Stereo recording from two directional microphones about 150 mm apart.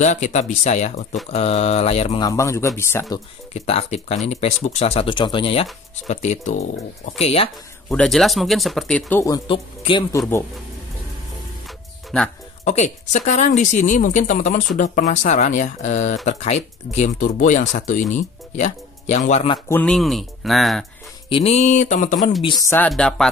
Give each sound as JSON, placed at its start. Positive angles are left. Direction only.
{"t": 0.0, "sound": "speech", "side_deg": 55}
{"t": 2.1, "sound": "a man's voice", "side_deg": 25}
{"t": 3.5, "sound": "speech", "side_deg": 45}
{"t": 7.2, "sound": "speech", "side_deg": 40}
{"t": 7.9, "sound": "speech", "side_deg": 5}
{"t": 9.5, "sound": "speech", "side_deg": 35}
{"t": 12.6, "sound": "speech", "side_deg": 50}
{"t": 19.7, "sound": "speech", "side_deg": 5}
{"t": 21.3, "sound": "speech", "side_deg": 40}
{"t": 22.8, "sound": "speech", "side_deg": 5}